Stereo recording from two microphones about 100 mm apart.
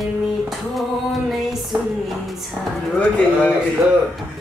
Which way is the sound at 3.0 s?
15° left (ahead or behind).